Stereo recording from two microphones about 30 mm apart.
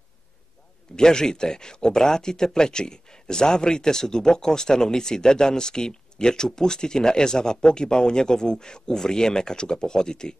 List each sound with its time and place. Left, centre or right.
0.9 s speech: left